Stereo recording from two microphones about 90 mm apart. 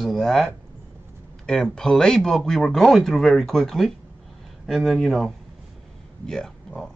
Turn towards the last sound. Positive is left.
turn(degrees=5)  # may be behind; listen again after turning